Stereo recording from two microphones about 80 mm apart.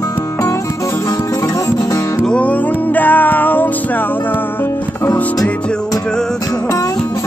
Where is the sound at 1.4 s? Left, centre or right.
Left.